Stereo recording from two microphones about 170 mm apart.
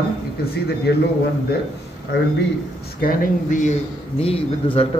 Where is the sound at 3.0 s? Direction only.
60° left (ahead or behind).